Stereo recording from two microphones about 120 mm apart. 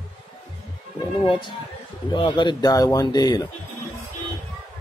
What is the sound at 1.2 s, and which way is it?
Speech, 45° left (ahead or behind).